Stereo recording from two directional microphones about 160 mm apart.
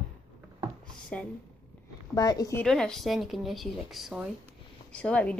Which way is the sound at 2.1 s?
25° left (ahead or behind).